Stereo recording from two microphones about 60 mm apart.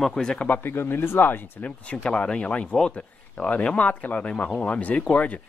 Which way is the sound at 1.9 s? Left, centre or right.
Centre.